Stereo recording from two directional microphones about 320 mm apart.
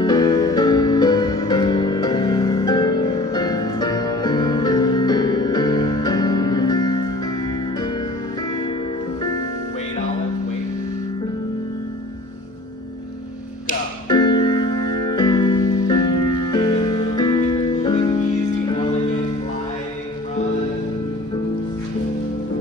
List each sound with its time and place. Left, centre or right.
0.0 s music: centre
14.0 s music: centre